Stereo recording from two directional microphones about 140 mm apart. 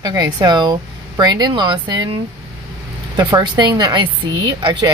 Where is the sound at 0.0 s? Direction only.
25° right (ahead or behind).